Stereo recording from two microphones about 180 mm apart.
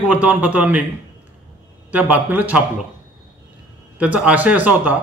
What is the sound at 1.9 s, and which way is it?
Speech, 10° right (ahead or behind).